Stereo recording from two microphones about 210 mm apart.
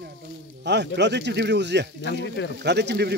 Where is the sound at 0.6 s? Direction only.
55° right (ahead or behind).